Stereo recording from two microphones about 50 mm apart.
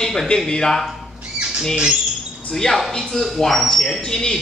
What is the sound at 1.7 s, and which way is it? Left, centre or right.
Speech, centre.